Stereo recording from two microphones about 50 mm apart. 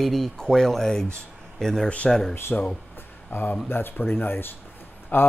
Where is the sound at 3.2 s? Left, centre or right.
Left.